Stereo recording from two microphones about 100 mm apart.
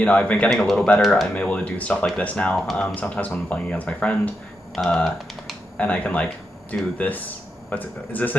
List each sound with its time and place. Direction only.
0.0 s speech: 15° left (ahead or behind)
1.3 s speech: 15° left (ahead or behind)
2.5 s speech: centre (ahead or behind)
2.9 s speech: 15° left (ahead or behind)